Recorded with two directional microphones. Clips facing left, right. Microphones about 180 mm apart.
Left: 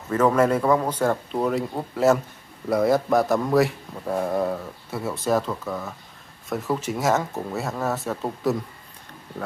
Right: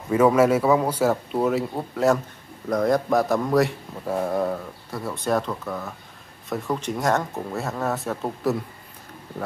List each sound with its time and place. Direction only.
0.1 s a man's voice: 10° right (ahead or behind)